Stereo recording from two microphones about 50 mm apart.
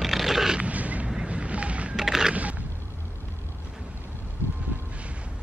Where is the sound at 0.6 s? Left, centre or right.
Right.